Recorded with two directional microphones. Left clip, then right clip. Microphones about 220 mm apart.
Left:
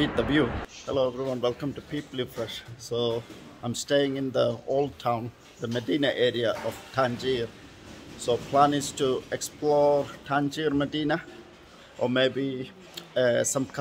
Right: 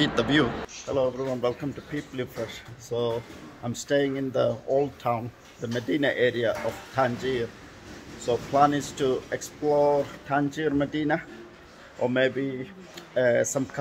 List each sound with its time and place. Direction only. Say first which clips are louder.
0.0 s speech: right 2 dB; 10° left (ahead or behind)